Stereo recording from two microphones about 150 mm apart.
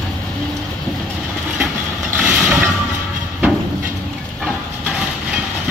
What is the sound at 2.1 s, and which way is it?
Mechanisms, 5° right (ahead or behind).